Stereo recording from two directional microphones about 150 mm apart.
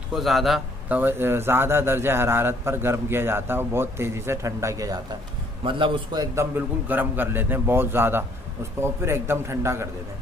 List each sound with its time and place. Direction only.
0.1 s speech: centre (ahead or behind); by 5.0 s 25° right (ahead or behind)
5.6 s a man's voice: 35° right (ahead or behind)
6.9 s speech: 10° right (ahead or behind)